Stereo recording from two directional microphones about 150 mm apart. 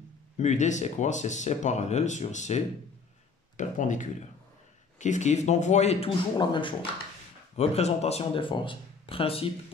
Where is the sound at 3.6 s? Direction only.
55° left (ahead or behind).